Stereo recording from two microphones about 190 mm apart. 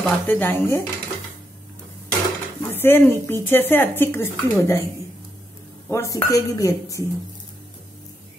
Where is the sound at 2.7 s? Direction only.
10° left (ahead or behind).